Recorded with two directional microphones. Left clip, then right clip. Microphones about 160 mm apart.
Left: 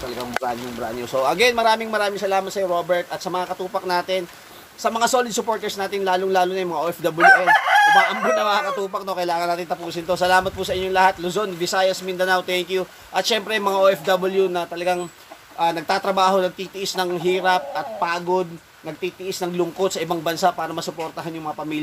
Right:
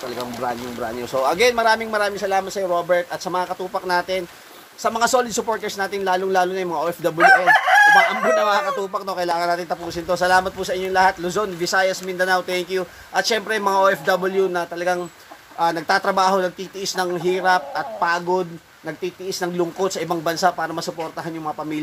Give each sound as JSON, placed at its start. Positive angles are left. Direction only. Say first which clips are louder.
{"t": 0.2, "sound": "a man's voice", "louder": "left 1 dB", "side_deg": -10}
{"t": 7.2, "sound": "chicken", "louder": "even", "side_deg": -70}
{"t": 8.4, "sound": "a man's voice", "louder": "right 1 dB", "side_deg": -5}